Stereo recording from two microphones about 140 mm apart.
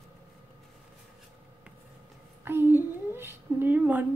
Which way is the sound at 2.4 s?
15° right (ahead or behind).